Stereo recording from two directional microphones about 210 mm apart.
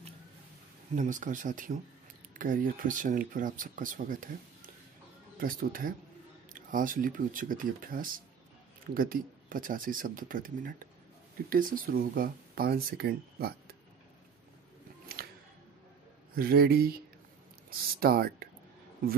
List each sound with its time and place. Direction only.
0.9 s speech: 35° right (ahead or behind)
15.2 s music: 50° right (ahead or behind)
16.3 s speech: 45° right (ahead or behind)